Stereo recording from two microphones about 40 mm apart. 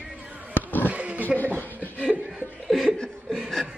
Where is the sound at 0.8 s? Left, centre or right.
Right.